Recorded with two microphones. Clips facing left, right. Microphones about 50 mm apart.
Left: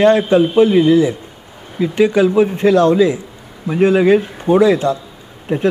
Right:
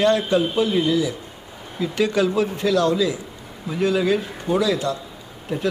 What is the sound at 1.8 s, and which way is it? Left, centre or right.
Speech, left.